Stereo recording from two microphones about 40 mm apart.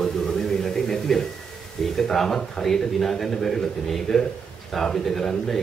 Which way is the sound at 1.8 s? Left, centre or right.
Centre.